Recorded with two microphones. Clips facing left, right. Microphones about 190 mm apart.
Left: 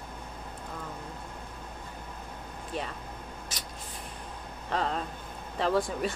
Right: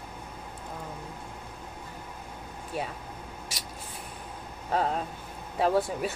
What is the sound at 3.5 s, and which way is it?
Spray, 10° right (ahead or behind).